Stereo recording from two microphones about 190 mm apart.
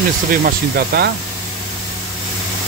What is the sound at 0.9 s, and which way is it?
Speech, 55° right (ahead or behind).